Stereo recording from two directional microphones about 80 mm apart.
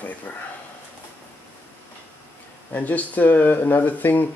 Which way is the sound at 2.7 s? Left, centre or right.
Left.